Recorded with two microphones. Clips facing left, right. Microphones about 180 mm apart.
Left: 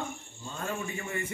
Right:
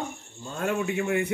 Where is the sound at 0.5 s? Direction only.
70° right (ahead or behind).